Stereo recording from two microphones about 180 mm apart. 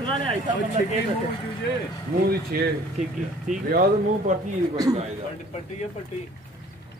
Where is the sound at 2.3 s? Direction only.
55° right (ahead or behind).